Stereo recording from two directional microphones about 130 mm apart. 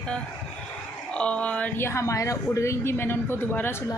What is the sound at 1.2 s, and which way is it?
Speech, 10° left (ahead or behind).